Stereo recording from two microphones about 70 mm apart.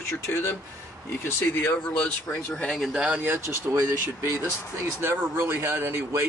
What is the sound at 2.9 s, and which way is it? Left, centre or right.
Speech, centre.